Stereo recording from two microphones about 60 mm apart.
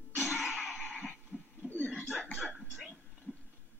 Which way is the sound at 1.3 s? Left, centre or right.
Centre.